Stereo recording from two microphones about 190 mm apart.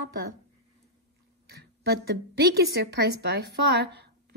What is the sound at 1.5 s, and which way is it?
A woman's voice, 60° right (ahead or behind).